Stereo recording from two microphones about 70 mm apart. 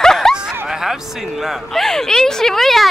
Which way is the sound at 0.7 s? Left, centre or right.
Centre.